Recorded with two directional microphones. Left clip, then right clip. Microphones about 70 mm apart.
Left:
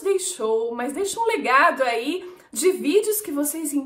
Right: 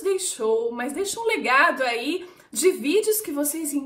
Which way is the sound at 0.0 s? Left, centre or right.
Left.